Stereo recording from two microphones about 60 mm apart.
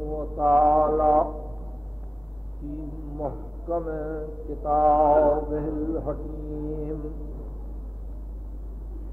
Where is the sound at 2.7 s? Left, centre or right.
Centre.